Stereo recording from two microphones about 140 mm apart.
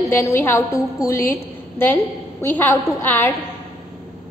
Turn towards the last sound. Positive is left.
turn(degrees=15)  # may be behind; listen again after turning